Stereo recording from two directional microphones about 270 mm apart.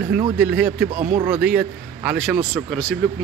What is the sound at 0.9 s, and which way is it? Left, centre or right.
Speech, right.